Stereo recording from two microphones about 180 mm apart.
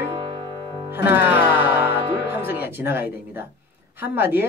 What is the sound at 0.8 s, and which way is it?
Music, 10° right (ahead or behind).